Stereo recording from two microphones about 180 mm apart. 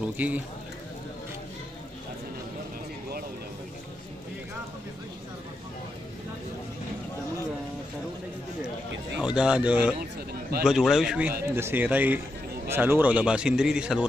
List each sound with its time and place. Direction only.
0.2 s speech: 10° right (ahead or behind)
9.2 s speech: 5° right (ahead or behind)